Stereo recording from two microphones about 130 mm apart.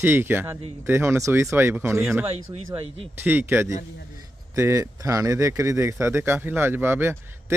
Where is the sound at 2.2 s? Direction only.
50° right (ahead or behind).